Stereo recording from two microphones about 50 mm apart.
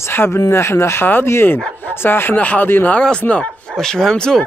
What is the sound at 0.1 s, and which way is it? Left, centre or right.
Speech, left.